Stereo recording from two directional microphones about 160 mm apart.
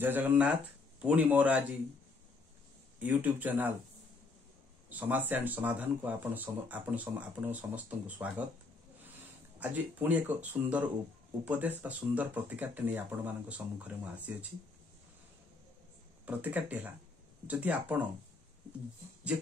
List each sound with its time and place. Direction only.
0.0 s speech: 10° right (ahead or behind)
3.0 s speech: 10° right (ahead or behind)
4.9 s speech: 10° right (ahead or behind)
9.6 s speech: 10° right (ahead or behind)
16.3 s speech: 10° right (ahead or behind)